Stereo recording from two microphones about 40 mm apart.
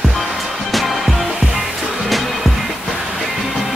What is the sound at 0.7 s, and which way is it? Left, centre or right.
Music, centre.